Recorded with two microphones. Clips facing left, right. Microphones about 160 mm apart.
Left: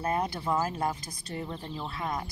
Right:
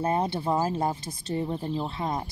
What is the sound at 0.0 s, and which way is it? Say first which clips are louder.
Speech: right 4 dB; 25° right (ahead or behind).